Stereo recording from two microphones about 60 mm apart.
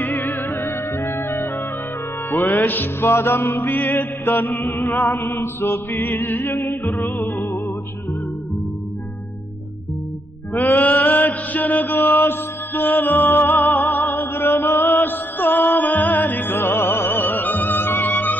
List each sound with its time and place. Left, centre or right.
0.0 s music: left
2.4 s chant: left
3.0 s chant: left
10.5 s mantra: left
11.9 s music: left
14.0 s music: left
14.7 s mantra: left
15.0 s music: left